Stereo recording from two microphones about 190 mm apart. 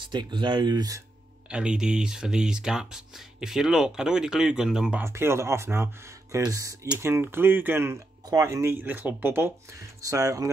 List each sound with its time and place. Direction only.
0.0 s speech: 25° right (ahead or behind)
1.5 s speech: 5° right (ahead or behind)